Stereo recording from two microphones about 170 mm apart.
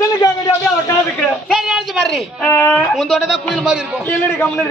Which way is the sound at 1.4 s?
5° right (ahead or behind).